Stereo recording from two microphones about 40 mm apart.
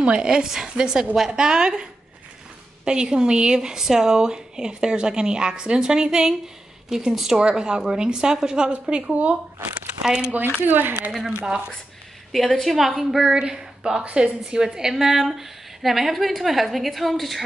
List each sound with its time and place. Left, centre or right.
0.0 s speech: right
0.3 s a woman's voice: centre; by 9.4 s right
10.0 s a woman's voice: right
10.7 s speech: right
12.3 s a woman's voice: centre
13.3 s a woman's voice: centre